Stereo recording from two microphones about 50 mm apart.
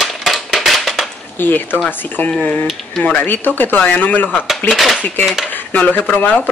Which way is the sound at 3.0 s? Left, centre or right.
Left.